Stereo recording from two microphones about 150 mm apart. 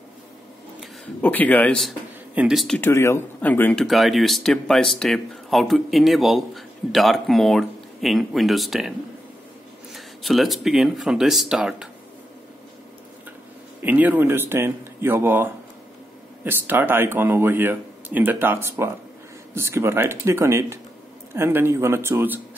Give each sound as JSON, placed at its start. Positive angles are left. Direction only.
{"t": 1.2, "sound": "speech", "side_deg": 10}
{"t": 2.8, "sound": "speech", "side_deg": 20}
{"t": 3.8, "sound": "speech", "side_deg": 0}
{"t": 9.9, "sound": "speech", "side_deg": 0}
{"t": 13.7, "sound": "speech", "side_deg": -10}